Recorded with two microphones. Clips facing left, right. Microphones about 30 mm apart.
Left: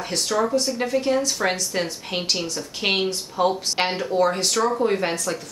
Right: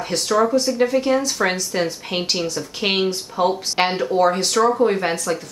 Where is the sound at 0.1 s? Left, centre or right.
Centre.